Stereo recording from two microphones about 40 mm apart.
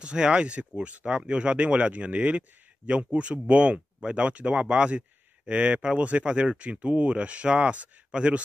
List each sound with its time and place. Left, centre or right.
0.0 s speech: right